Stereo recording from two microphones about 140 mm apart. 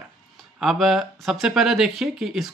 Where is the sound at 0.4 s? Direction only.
Centre (ahead or behind).